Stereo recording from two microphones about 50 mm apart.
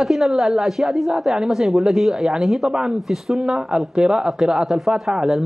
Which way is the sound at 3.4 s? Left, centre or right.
Centre.